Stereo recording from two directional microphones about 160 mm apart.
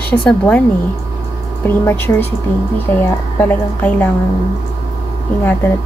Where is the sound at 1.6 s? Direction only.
15° left (ahead or behind).